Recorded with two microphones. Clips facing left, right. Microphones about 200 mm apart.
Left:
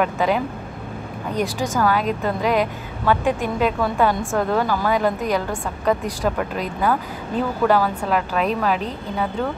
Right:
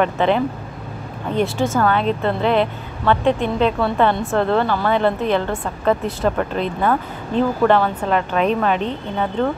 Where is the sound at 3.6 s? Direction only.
10° left (ahead or behind).